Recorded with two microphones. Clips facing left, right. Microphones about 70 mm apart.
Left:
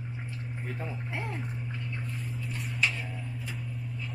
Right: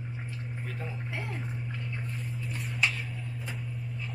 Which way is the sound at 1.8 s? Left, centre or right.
Centre.